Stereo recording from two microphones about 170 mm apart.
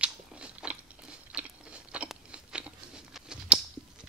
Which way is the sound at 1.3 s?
5° right (ahead or behind).